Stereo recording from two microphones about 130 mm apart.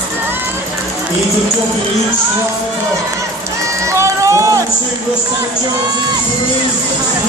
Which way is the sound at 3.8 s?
25° right (ahead or behind).